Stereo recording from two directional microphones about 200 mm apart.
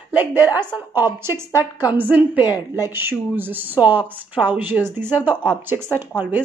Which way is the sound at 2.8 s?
10° right (ahead or behind).